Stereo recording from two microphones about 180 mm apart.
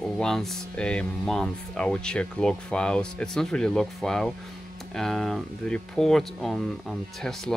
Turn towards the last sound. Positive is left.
turn(degrees=0)  # may be behind; listen again after turning